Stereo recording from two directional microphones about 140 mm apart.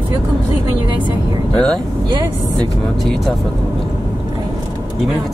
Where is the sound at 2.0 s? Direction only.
30° right (ahead or behind).